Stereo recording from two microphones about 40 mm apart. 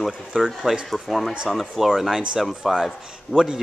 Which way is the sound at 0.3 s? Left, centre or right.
Right.